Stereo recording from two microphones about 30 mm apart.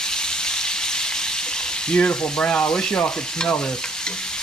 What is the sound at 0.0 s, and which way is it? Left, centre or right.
Frying, left.